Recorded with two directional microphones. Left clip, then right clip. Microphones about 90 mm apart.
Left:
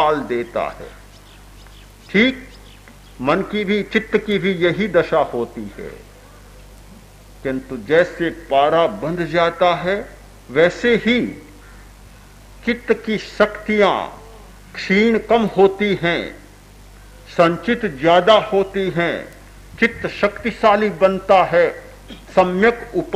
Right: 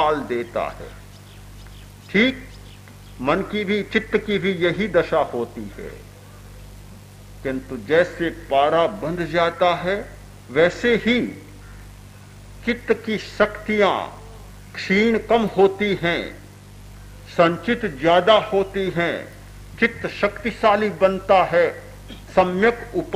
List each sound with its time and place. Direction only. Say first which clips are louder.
0.0 s speech: left 3 dB; 30° right (ahead or behind)
2.0 s a man's voice: left 3 dB; 25° right (ahead or behind)
7.4 s a man's voice: left 3 dB; 30° right (ahead or behind)
12.6 s a man's voice: left 3 dB; 30° right (ahead or behind)